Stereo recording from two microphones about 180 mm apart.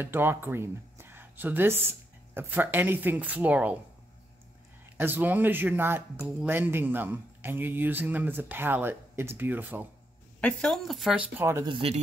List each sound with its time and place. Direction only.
0.0 s speech: 10° right (ahead or behind)
4.9 s a man's voice: 10° right (ahead or behind)
10.4 s speech: centre (ahead or behind); by 11.7 s 15° right (ahead or behind)
11.7 s speech: 35° right (ahead or behind)